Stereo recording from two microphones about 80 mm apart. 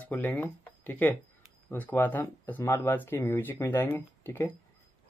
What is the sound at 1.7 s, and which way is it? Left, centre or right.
Speech, left.